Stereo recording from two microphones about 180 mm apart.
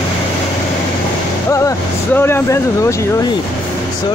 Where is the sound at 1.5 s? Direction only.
15° left (ahead or behind).